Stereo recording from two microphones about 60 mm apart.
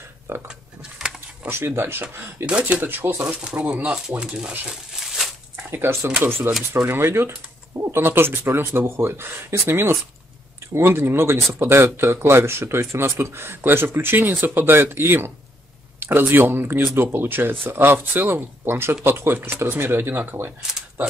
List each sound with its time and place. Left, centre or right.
0.5 s a sound: centre
1.5 s speech: right
2.4 s speech: right
2.8 s speech: right
3.7 s speech: centre
5.0 s a sound: centre
5.7 s speech: right
8.0 s speech: right